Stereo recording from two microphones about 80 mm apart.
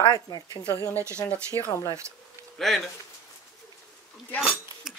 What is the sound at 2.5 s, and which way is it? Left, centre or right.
Speech, centre.